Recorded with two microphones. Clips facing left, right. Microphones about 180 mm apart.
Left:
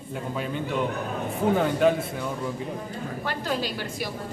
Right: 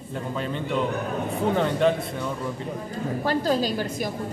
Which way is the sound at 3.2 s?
35° right (ahead or behind).